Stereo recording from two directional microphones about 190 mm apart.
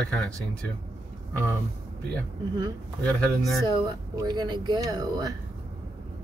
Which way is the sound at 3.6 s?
20° right (ahead or behind).